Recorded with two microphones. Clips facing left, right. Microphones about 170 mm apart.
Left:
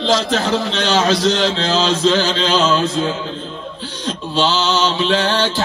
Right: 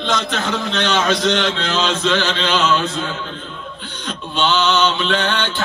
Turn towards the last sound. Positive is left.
turn(degrees=35)  # may be behind; listen again after turning